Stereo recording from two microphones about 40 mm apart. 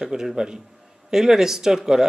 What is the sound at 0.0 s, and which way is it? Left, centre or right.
Speech, centre.